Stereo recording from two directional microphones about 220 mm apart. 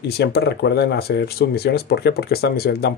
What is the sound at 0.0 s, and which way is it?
Speech, 50° left (ahead or behind).